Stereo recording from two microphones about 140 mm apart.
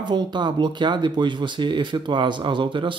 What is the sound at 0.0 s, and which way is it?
Speech, 30° right (ahead or behind).